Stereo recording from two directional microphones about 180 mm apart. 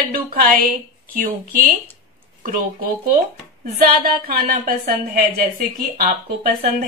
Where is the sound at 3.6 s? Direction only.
55° right (ahead or behind).